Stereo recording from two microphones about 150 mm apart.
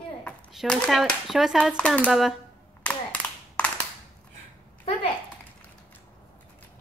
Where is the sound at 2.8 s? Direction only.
10° left (ahead or behind).